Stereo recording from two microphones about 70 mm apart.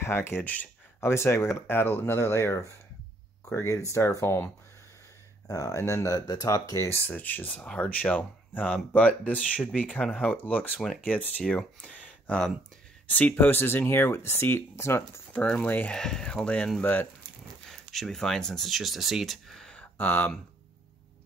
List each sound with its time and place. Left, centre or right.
0.0 s speech: left
0.4 s speech: left
1.0 s speech: left
5.5 s speech: left
7.1 s speech: left
15.4 s speech: centre
16.8 s speech: left
17.6 s speech: centre
19.7 s a sound: left